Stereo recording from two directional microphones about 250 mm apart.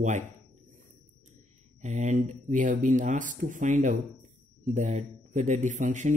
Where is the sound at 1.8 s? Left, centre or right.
Right.